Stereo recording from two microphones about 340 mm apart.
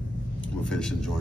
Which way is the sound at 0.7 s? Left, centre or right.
Centre.